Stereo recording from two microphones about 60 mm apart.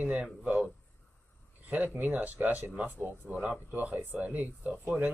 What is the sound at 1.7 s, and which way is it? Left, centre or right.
Speech, right.